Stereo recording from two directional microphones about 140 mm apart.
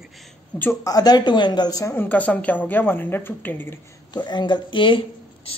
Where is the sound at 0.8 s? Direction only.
25° left (ahead or behind).